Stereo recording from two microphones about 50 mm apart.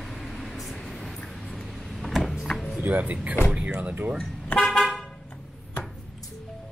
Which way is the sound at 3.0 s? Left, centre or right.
Right.